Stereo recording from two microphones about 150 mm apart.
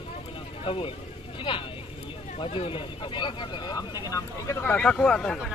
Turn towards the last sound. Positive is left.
turn(degrees=5)  # may be behind; listen again after turning